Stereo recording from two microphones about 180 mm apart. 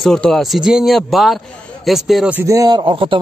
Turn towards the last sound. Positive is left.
turn(degrees=-30)  # may be behind; listen again after turning